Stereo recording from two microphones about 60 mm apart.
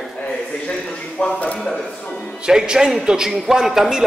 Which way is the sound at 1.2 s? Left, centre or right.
Centre.